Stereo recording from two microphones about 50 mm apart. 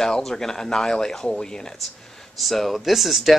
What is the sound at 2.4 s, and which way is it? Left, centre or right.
Speech, centre.